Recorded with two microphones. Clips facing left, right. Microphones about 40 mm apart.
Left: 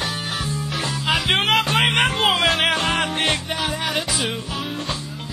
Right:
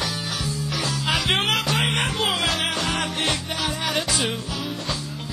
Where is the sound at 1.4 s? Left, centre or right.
Left.